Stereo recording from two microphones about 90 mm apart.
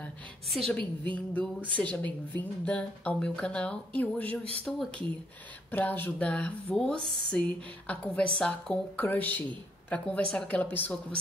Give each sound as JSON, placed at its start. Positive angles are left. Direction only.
{"t": 1.1, "sound": "a woman's voice", "side_deg": 15}